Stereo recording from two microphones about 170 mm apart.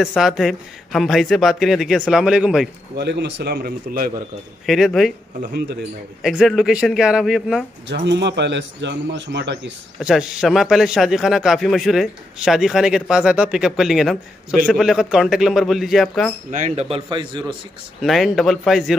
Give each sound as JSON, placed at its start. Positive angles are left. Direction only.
{"t": 0.0, "sound": "a man's voice", "side_deg": 0}
{"t": 3.0, "sound": "a man's voice", "side_deg": -85}
{"t": 4.6, "sound": "a man's voice", "side_deg": 0}
{"t": 5.4, "sound": "a man's voice", "side_deg": -65}
{"t": 6.2, "sound": "a man's voice", "side_deg": -5}
{"t": 7.9, "sound": "a man's voice", "side_deg": -90}
{"t": 9.9, "sound": "a man's voice", "side_deg": -5}
{"t": 16.4, "sound": "a man's voice", "side_deg": -45}
{"t": 16.9, "sound": "a man's voice", "side_deg": -25}
{"t": 18.0, "sound": "a man's voice", "side_deg": 0}